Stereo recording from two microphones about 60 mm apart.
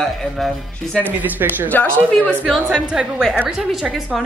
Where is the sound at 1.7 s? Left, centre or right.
Left.